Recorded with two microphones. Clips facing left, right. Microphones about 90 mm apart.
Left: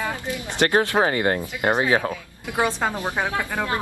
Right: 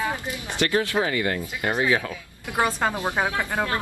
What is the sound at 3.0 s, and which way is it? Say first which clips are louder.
Speech: right 1 dB; 15° right (ahead or behind).